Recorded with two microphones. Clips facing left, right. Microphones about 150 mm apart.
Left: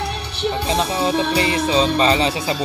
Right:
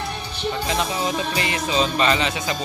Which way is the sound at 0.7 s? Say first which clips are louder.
Left 4 dB; 35° left (ahead or behind).